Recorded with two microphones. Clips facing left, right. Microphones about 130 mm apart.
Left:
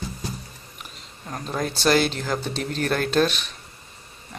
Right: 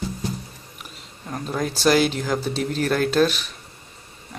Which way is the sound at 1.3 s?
Centre (ahead or behind).